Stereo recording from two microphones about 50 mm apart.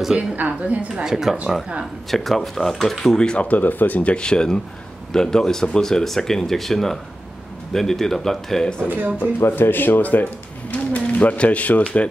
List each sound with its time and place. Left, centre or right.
0.5 s a woman's voice: right
1.0 s speech: centre
2.0 s speech: centre
3.4 s speech: left
4.1 s speech: centre
8.8 s speech: right
9.5 s speech: left